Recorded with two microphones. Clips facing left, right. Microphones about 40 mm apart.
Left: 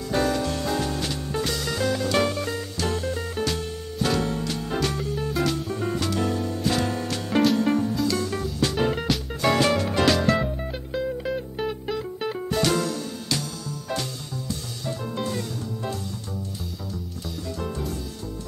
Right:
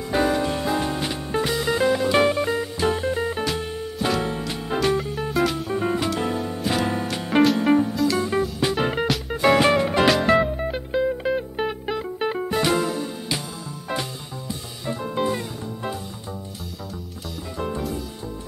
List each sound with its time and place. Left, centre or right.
0.1 s music: right
5.3 s music: centre
5.7 s music: right
7.9 s music: centre
8.2 s music: right
14.9 s music: right